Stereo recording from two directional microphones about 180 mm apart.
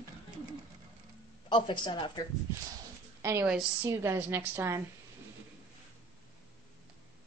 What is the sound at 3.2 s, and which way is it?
A woman's voice, 10° right (ahead or behind).